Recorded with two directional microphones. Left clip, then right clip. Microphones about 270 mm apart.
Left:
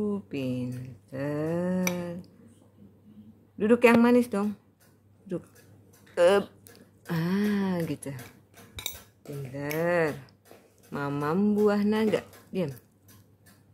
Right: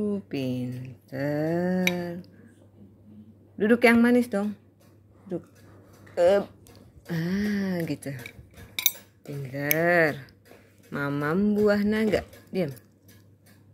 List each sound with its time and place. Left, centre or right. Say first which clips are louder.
0.3 s speech: right 2 dB; centre
0.8 s a sound: right 7 dB; centre
3.5 s speech: right 1 dB; centre
9.5 s speech: right 4 dB; centre